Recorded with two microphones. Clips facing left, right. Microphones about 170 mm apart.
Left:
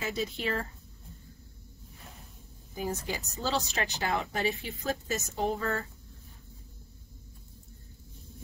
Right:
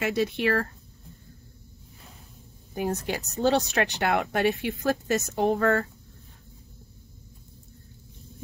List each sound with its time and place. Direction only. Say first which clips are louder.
0.0 s speech: right 8 dB; 70° right (ahead or behind)
2.7 s speech: right 5 dB; 65° right (ahead or behind)